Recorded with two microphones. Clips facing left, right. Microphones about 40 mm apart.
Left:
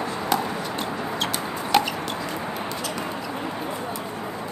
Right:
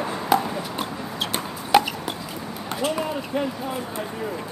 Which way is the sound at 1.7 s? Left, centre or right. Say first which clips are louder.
Right 3 dB; centre.